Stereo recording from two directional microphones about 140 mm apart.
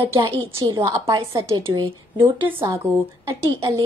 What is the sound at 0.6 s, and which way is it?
A woman's voice, 25° right (ahead or behind).